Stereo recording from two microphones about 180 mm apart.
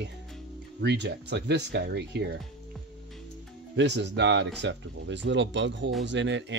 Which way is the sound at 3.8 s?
75° right (ahead or behind).